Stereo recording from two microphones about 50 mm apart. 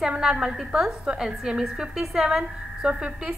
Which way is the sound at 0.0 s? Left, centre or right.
Centre.